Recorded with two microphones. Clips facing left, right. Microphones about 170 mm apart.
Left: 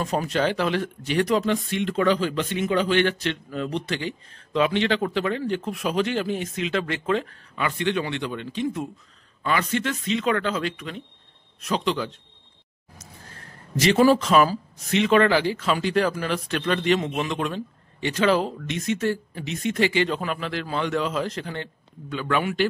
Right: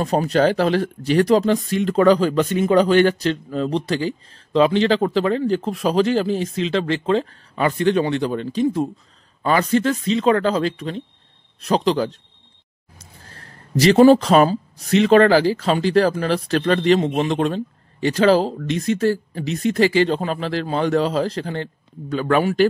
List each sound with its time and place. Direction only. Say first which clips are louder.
0.0 s speech: right 6 dB; 35° right (ahead or behind)
13.7 s speech: right 6 dB; 30° right (ahead or behind)